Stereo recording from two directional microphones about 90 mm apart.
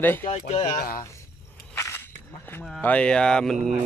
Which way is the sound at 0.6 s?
45° left (ahead or behind).